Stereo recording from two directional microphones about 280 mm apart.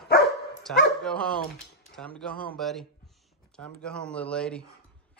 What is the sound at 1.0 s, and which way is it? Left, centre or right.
Speech, centre.